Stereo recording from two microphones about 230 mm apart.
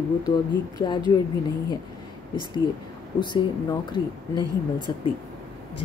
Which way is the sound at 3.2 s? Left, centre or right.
Centre.